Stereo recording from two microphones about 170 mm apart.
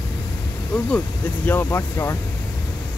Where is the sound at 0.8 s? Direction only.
10° left (ahead or behind).